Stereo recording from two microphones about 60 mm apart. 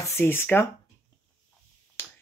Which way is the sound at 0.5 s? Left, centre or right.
Left.